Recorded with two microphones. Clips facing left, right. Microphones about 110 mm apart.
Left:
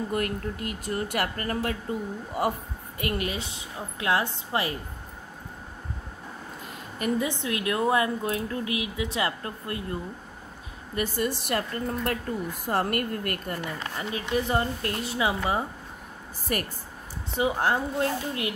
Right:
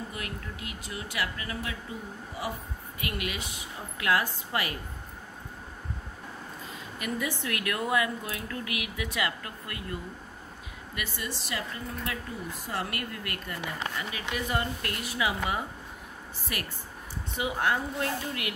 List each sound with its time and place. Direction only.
0.1 s speech: 50° left (ahead or behind)
3.0 s a woman's voice: 40° left (ahead or behind)
7.2 s a woman's voice: 20° left (ahead or behind)
11.0 s speech: 40° left (ahead or behind)
14.3 s a woman's voice: 30° left (ahead or behind)
16.5 s speech: 40° left (ahead or behind)